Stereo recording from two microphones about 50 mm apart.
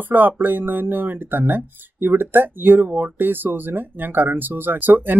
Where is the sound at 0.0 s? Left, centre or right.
Right.